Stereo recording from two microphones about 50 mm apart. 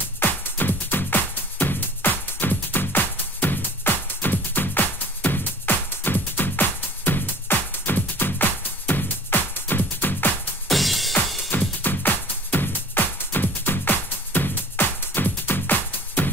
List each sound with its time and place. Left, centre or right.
0.2 s music: left
10.7 s music: centre
11.8 s music: left